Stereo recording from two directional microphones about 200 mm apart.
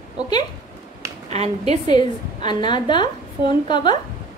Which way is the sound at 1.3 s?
35° right (ahead or behind).